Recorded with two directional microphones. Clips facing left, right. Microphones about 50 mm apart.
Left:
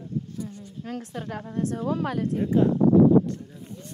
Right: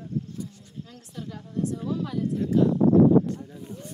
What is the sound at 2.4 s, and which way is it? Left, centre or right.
Speech, left.